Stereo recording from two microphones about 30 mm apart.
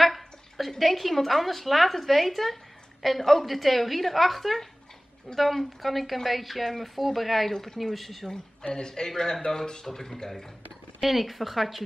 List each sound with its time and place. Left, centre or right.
0.0 s a sound: centre
0.7 s a woman's voice: centre
7.5 s speech: centre
8.7 s speech: left
11.0 s a woman's voice: centre